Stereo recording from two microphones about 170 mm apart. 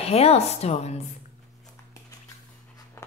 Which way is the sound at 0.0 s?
35° left (ahead or behind).